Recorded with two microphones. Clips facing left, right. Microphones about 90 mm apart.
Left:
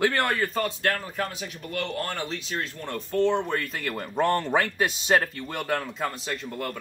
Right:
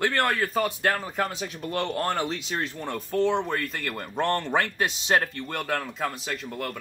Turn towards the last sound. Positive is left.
turn(degrees=0)  # may be behind; listen again after turning